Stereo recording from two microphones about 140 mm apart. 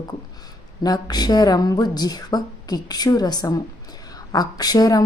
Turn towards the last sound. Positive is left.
turn(degrees=25)  # may be behind; listen again after turning